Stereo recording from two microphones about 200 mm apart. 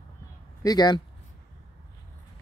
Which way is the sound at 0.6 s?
20° left (ahead or behind).